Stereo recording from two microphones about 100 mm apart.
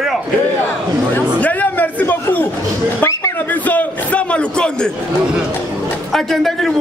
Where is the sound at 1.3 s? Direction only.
15° left (ahead or behind).